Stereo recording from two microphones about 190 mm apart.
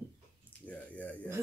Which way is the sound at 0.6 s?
5° left (ahead or behind).